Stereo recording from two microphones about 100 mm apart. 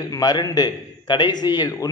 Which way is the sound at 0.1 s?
40° left (ahead or behind).